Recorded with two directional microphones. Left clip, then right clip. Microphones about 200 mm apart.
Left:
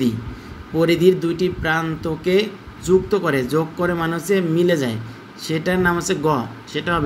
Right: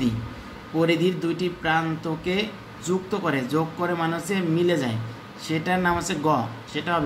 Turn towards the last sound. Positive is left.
turn(degrees=20)  # may be behind; listen again after turning